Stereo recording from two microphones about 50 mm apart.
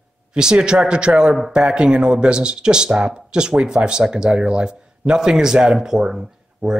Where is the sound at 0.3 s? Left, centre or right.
Centre.